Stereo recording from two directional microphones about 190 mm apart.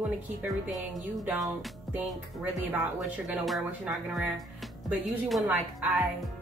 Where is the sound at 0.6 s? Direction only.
Centre (ahead or behind).